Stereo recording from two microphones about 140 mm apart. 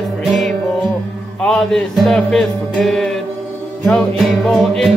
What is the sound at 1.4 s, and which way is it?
Speech, 5° left (ahead or behind).